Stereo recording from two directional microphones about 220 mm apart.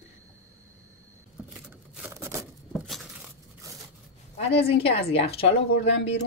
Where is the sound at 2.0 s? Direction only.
10° right (ahead or behind).